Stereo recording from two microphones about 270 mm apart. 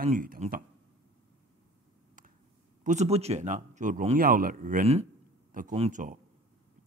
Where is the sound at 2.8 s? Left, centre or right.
Right.